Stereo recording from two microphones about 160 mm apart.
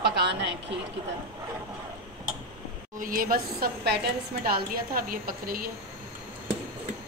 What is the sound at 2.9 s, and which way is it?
A woman's voice, 60° right (ahead or behind).